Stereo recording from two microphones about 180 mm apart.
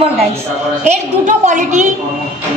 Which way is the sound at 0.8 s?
40° right (ahead or behind).